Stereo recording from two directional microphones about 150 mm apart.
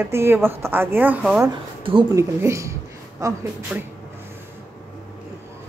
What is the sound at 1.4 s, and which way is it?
Speech, 35° right (ahead or behind).